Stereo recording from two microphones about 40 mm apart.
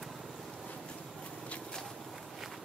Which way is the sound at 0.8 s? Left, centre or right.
Left.